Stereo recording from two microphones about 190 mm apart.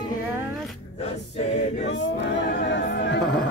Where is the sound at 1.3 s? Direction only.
35° left (ahead or behind).